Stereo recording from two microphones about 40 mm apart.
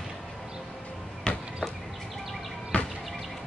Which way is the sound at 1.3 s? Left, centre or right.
Left.